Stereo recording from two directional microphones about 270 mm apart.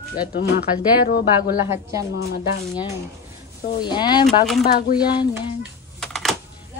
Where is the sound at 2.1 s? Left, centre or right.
Left.